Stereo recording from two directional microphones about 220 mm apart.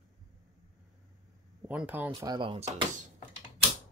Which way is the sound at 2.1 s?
20° right (ahead or behind).